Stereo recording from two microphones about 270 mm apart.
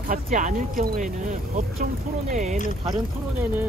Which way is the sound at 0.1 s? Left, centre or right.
Right.